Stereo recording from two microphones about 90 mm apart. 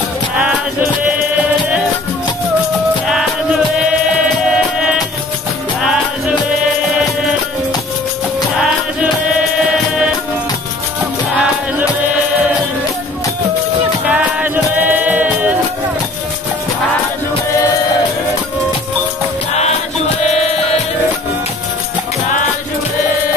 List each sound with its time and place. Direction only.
14.0 s music: 15° right (ahead or behind)